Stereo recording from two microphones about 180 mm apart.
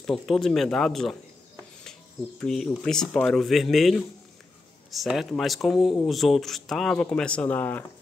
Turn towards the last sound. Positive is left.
turn(degrees=10)  # may be behind; listen again after turning